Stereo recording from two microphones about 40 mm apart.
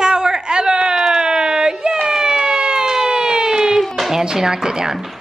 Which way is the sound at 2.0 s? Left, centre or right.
Centre.